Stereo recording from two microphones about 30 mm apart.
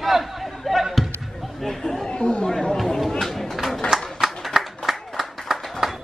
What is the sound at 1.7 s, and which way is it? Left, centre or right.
Chatter, centre.